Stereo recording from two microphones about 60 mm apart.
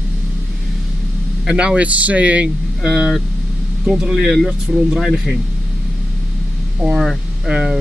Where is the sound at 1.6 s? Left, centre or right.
Right.